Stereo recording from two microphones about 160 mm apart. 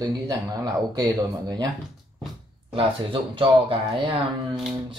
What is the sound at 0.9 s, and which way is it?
Speech, 25° right (ahead or behind).